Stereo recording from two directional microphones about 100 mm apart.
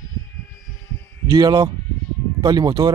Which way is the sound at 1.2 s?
40° right (ahead or behind).